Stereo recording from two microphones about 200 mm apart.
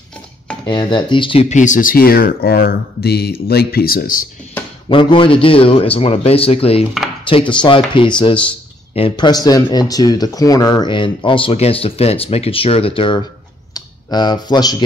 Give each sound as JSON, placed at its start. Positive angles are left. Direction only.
{"t": 0.7, "sound": "speech", "side_deg": 25}
{"t": 4.8, "sound": "a man's voice", "side_deg": 25}